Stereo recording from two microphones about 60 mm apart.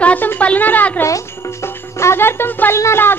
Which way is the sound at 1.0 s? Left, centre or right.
Left.